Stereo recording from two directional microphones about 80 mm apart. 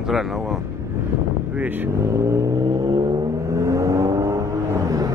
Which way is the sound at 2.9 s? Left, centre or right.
Right.